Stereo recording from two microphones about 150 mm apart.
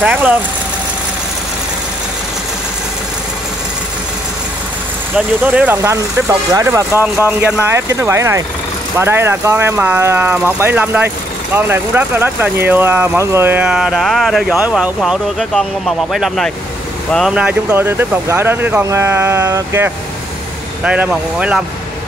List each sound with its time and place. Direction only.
0.0 s speech: 10° right (ahead or behind)
5.1 s speech: 10° right (ahead or behind)
5.8 s speech: 20° right (ahead or behind)